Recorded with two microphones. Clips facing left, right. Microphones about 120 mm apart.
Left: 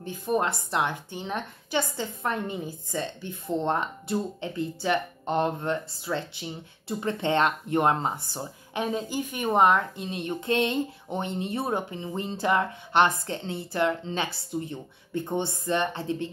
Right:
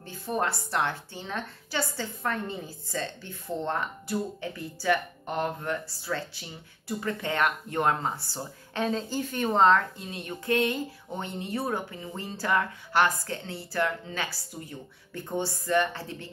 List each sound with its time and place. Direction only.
0.0 s speech: 15° left (ahead or behind)